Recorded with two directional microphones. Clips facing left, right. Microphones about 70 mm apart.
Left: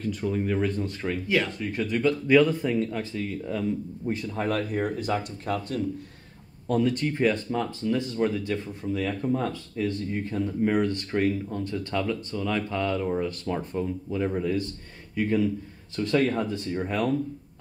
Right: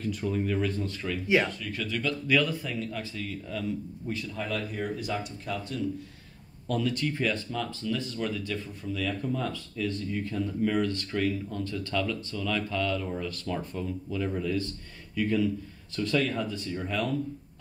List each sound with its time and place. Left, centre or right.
0.3 s speech: left
1.0 s speech: left
4.1 s speech: left
6.7 s speech: left